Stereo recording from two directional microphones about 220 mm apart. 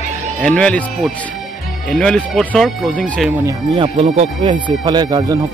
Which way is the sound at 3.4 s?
25° right (ahead or behind).